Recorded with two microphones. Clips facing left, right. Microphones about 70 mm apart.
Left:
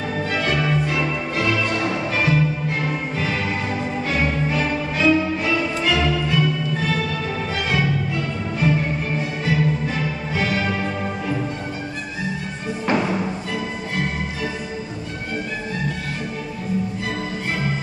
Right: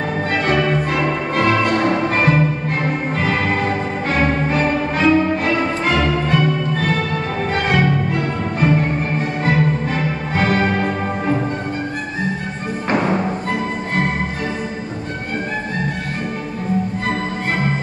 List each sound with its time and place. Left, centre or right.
0.3 s music: right
12.8 s music: right